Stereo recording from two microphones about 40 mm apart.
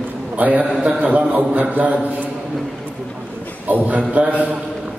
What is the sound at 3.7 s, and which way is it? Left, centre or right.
Speech, right.